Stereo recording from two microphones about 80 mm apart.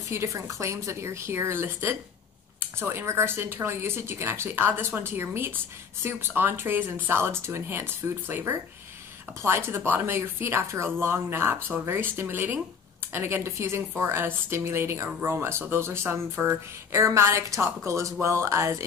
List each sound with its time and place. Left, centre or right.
0.1 s a woman's voice: right